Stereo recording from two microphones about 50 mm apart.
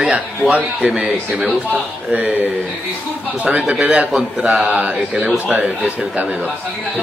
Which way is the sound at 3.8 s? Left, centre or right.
Right.